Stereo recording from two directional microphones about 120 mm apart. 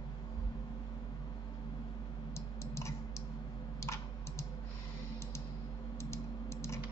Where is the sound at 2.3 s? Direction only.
25° left (ahead or behind).